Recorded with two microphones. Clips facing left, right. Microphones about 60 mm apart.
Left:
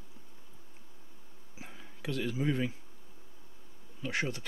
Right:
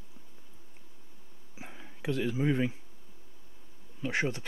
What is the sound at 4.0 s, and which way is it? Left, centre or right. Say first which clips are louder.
Speech: right 3 dB; right.